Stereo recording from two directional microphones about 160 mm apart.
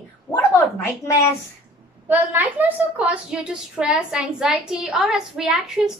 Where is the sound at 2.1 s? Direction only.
10° right (ahead or behind).